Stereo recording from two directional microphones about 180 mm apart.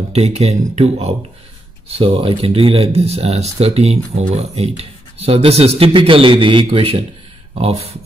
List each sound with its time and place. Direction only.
0.1 s speech: 35° right (ahead or behind)